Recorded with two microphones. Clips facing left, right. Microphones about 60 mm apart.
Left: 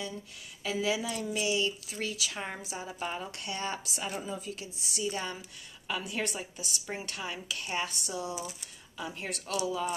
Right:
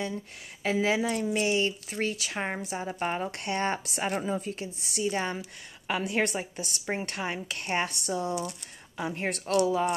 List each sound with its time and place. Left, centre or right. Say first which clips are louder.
0.7 s speech: right 5 dB; right
9.5 s speech: right 8 dB; right